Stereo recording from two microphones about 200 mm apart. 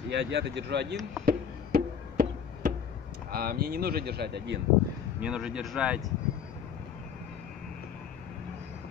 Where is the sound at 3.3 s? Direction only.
50° right (ahead or behind).